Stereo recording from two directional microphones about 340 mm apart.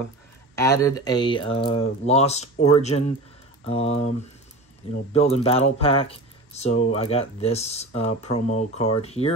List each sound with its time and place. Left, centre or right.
0.6 s speech: centre
5.1 s speech: centre